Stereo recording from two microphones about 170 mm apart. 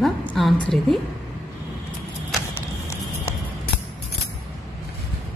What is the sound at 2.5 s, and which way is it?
Music, 15° left (ahead or behind).